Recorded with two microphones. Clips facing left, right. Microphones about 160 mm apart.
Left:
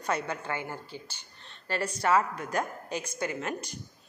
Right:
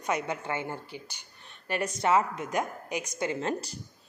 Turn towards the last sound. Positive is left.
turn(degrees=-35)  # may be behind; listen again after turning